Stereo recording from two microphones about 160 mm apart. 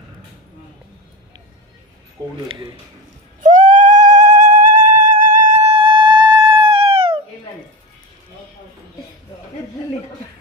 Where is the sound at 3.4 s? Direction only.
55° right (ahead or behind); by 7.2 s 35° right (ahead or behind).